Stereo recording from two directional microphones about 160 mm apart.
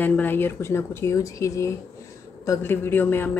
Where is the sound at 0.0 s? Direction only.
10° left (ahead or behind).